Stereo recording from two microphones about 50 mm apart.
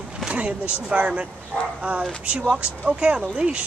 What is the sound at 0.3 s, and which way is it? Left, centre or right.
Speech, right.